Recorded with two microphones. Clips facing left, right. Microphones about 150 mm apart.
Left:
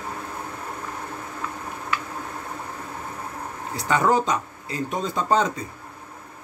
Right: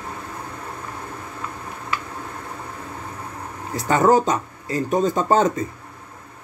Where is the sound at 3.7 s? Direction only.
45° right (ahead or behind).